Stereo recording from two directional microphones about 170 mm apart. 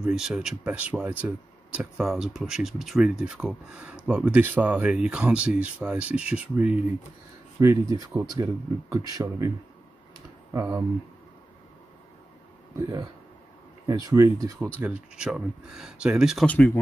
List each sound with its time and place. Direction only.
0.0 s speech: 5° right (ahead or behind); by 9.5 s 20° right (ahead or behind)
10.5 s speech: 20° right (ahead or behind)
12.7 s speech: 20° right (ahead or behind)
14.8 s speech: 5° right (ahead or behind)
16.4 s speech: 10° left (ahead or behind)